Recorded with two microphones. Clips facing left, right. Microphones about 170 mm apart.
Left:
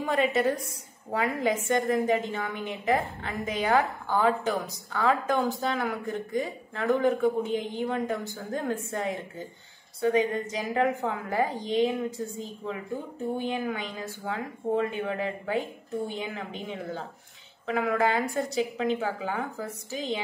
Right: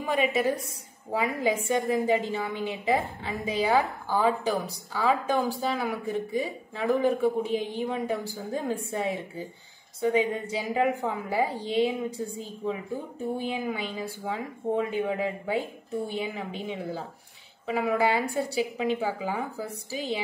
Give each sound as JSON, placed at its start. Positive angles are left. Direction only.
{"t": 0.0, "sound": "speech", "side_deg": -5}